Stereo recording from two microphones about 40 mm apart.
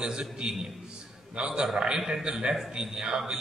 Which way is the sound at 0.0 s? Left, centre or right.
Right.